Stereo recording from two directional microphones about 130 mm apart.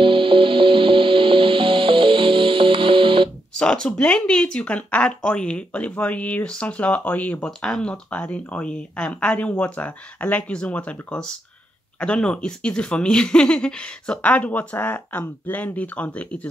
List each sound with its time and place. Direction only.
0.0 s music: 45° right (ahead or behind)
3.5 s speech: 5° left (ahead or behind)